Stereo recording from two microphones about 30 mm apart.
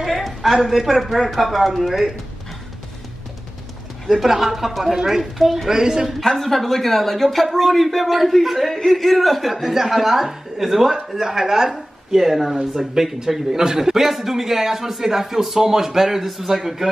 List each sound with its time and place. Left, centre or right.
0.0 s a woman's voice: centre
4.1 s speech: centre
5.2 s a man's voice: centre
5.7 s a woman's voice: centre
6.3 s a man's voice: centre
11.1 s speech: centre
12.2 s a man's voice: centre
13.9 s speech: centre